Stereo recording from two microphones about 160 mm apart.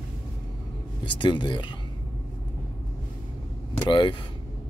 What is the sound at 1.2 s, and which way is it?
Speech, 30° left (ahead or behind).